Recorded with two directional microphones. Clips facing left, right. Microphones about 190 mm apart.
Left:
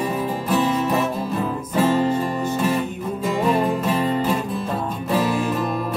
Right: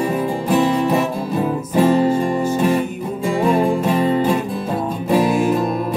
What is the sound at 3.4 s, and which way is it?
Music, 10° right (ahead or behind).